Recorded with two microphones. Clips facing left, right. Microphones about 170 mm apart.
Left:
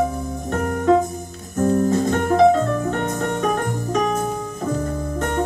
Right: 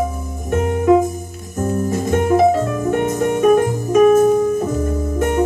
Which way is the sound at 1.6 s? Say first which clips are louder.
Left 2 dB; 20° right (ahead or behind).